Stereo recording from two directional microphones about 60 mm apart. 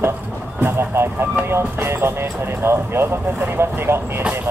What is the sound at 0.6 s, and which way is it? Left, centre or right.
Vehicle, right.